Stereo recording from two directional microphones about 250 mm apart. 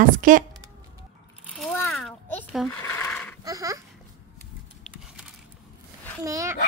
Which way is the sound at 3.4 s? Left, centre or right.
Centre.